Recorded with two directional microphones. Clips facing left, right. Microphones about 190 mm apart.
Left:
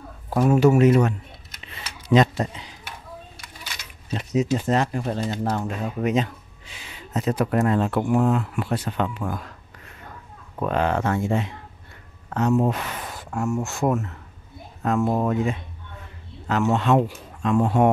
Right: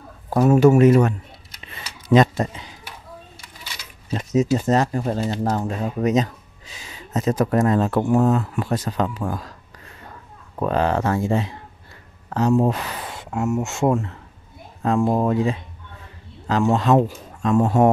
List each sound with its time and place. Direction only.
0.3 s a man's voice: 45° right (ahead or behind)
1.9 s a sound: 45° right (ahead or behind)
4.1 s speech: 45° right (ahead or behind)
10.6 s speech: 35° right (ahead or behind)